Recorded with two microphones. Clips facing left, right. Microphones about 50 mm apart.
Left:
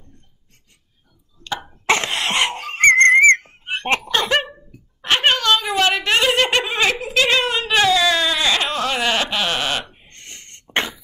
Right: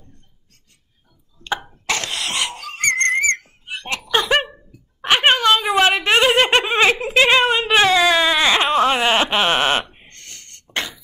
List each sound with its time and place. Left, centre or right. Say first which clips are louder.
1.9 s whistle: left 5 dB; left
5.0 s a sound: right 2 dB; right
8.0 s bleat: right 3 dB; centre
10.1 s cough: left 3 dB; left